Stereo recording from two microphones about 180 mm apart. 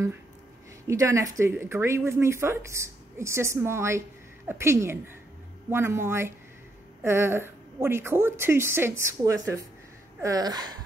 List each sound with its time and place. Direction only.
0.8 s speech: 15° right (ahead or behind)